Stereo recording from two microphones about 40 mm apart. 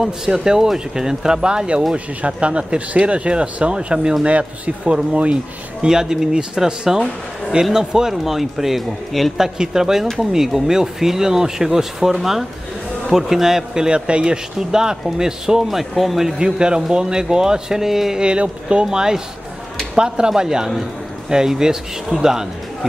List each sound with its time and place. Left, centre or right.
0.0 s a man's voice: centre; by 5.9 s right
5.9 s speech: centre
9.4 s speech: centre
15.9 s speech: centre
16.3 s speech: right
18.2 s speech: right